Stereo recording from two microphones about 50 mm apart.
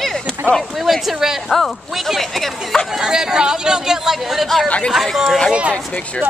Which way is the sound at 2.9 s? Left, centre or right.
Centre.